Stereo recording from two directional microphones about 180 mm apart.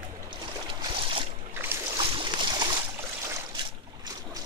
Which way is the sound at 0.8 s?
30° right (ahead or behind).